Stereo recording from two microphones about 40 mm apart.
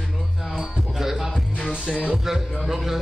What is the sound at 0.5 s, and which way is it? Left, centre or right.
Music, centre.